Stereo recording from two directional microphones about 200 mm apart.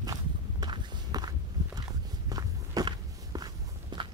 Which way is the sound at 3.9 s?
20° right (ahead or behind).